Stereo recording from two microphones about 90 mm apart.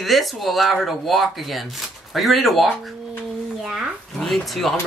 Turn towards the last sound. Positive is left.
turn(degrees=0)  # may be behind; listen again after turning